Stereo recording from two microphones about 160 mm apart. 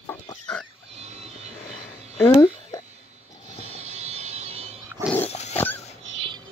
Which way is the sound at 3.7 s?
45° right (ahead or behind).